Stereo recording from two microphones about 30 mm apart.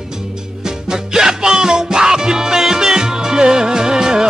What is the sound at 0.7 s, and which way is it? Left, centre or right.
Music, right.